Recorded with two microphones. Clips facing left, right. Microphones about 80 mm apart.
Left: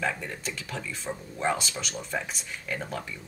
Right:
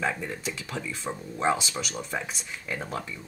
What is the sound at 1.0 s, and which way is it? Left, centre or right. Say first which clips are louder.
Speech: right 3 dB; centre.